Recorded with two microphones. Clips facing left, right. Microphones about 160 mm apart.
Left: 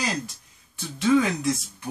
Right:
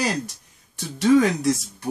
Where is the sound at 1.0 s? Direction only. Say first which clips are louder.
Right 4 dB; 40° right (ahead or behind).